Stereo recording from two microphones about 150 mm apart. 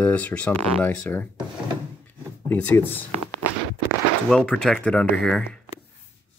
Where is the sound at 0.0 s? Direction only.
10° left (ahead or behind).